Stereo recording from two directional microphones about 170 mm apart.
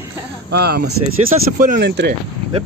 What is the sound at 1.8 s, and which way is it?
Speech, 80° right.